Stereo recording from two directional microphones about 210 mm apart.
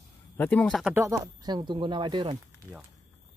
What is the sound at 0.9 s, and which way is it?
Speech, 15° right (ahead or behind).